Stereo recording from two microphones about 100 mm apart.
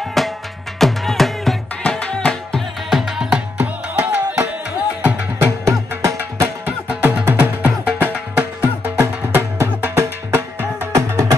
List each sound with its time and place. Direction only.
0.2 s music: centre (ahead or behind)
2.9 s music: 5° right (ahead or behind)
5.0 s music: 25° right (ahead or behind)
6.9 s music: 15° right (ahead or behind)